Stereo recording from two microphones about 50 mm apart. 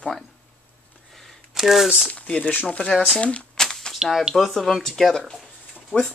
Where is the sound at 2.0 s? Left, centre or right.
Left.